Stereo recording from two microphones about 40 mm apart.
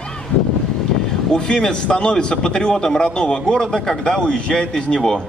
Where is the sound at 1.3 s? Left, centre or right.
Centre.